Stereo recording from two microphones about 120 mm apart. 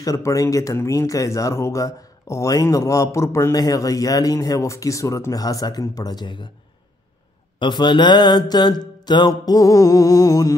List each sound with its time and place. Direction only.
0.0 s speech: 30° left (ahead or behind)
7.5 s mantra: 40° left (ahead or behind)